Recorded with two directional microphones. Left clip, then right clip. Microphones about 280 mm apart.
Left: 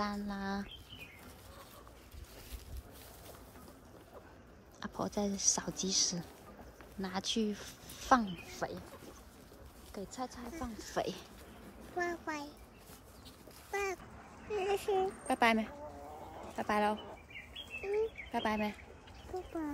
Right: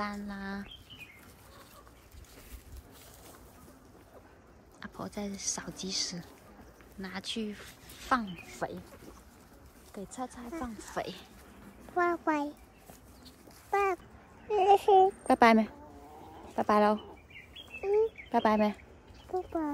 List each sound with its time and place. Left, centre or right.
0.0 s speech: centre
4.7 s speech: centre
10.3 s speech: centre
11.0 s speech: centre
12.0 s speech: centre
13.7 s a child's voice: centre